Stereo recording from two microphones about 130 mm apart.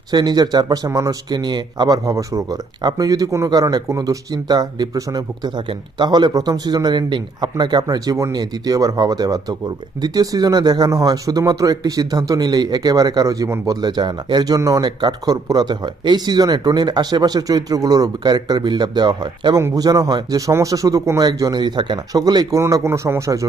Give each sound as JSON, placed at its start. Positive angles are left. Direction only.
{"t": 0.1, "sound": "a man's voice", "side_deg": -30}